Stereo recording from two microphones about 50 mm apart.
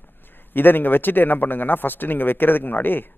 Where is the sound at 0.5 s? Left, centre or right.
Left.